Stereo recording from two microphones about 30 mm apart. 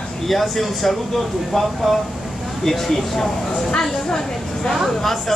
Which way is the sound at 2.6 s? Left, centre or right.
Centre.